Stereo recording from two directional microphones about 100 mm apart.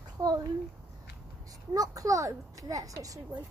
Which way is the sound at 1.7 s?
35° right (ahead or behind).